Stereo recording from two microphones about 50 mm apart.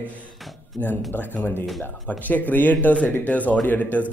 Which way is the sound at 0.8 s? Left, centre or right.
Left.